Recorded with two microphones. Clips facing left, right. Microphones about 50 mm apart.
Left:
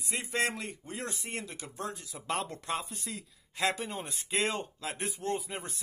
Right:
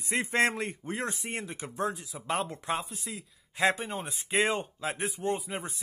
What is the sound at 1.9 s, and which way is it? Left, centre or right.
Speech, centre.